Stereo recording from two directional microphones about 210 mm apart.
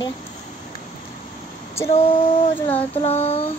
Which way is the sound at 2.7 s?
30° left (ahead or behind).